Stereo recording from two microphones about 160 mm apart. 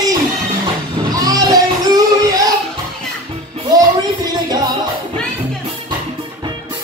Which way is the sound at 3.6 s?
25° right (ahead or behind).